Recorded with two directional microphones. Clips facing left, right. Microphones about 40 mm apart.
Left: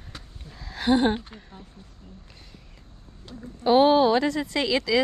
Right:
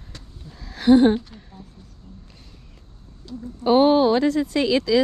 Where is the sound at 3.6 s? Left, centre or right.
Left.